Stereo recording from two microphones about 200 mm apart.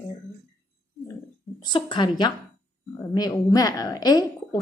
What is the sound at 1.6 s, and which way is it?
A woman's voice, 25° left (ahead or behind).